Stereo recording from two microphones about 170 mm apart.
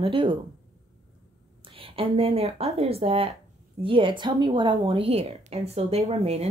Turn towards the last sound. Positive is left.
turn(degrees=-40)  # may be behind; listen again after turning